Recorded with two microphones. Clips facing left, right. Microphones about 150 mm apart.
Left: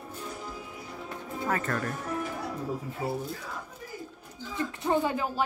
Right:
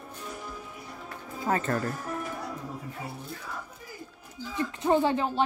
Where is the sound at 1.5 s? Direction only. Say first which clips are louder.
Right 3 dB; 25° right (ahead or behind).